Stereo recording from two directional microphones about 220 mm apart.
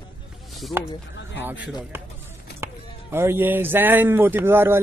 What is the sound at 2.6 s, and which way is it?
Speech, 10° right (ahead or behind).